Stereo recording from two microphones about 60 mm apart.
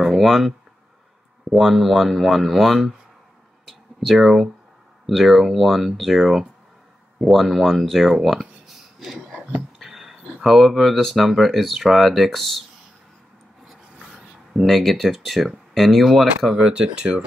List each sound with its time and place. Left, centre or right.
0.0 s speech: centre
3.6 s a sound: centre
5.0 s speech: centre
9.0 s a sound: centre
9.8 s speech: centre
14.1 s speech: centre
16.5 s speech: centre